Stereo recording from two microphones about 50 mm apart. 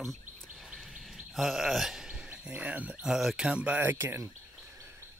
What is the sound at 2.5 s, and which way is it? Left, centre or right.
Speech, right.